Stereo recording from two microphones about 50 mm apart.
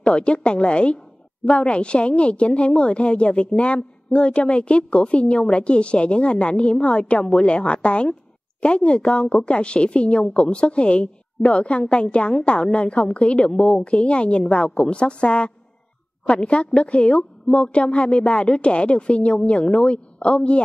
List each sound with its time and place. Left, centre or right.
0.0 s a woman's voice: left